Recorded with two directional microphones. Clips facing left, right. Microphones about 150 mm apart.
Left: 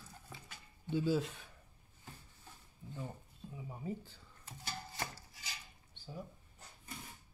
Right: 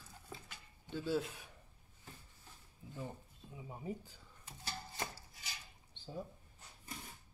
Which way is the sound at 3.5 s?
15° right (ahead or behind).